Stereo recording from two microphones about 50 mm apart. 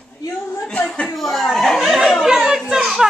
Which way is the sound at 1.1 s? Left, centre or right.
Centre.